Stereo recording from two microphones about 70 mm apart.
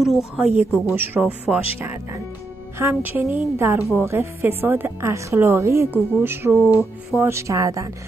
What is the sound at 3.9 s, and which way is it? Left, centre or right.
A woman's voice, right.